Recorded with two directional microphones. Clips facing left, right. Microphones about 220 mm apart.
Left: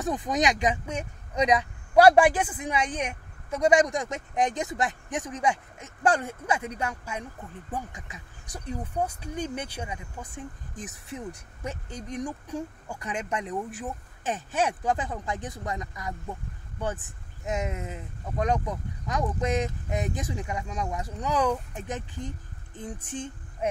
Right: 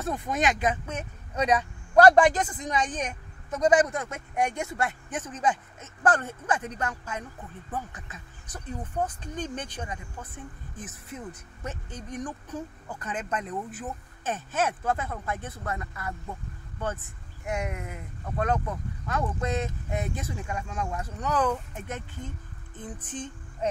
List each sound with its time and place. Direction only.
0.0 s speech: 15° left (ahead or behind)